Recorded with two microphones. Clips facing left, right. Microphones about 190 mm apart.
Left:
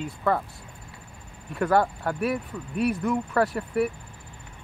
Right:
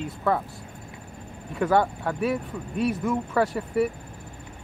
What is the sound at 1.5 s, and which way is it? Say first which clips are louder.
Speech: even; centre (ahead or behind).